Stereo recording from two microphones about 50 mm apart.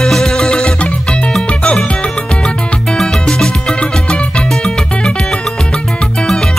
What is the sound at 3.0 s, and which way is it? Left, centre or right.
Music, centre.